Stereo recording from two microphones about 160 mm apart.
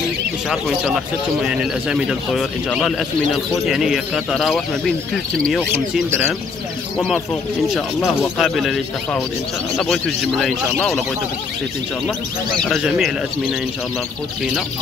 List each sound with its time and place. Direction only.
0.5 s speech: centre (ahead or behind)
8.0 s speech: 15° left (ahead or behind)
8.4 s speech: centre (ahead or behind)
9.8 s speech: centre (ahead or behind)
12.6 s speech: centre (ahead or behind)